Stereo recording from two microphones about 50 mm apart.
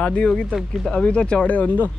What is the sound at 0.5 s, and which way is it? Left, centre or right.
Speech, centre.